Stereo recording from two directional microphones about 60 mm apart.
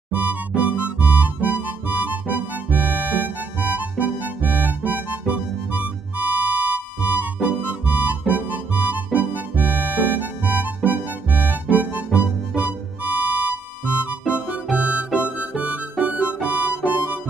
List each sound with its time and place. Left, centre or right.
0.1 s music: right
7.8 s harmonica: right
8.3 s music: right
14.2 s music: centre
15.2 s harmonica: right